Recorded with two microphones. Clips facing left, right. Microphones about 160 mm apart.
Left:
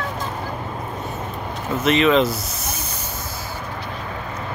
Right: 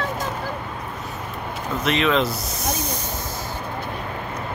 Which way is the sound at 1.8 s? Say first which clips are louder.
Left 4 dB; centre (ahead or behind).